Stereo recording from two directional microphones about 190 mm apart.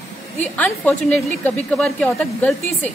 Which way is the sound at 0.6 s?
10° left (ahead or behind).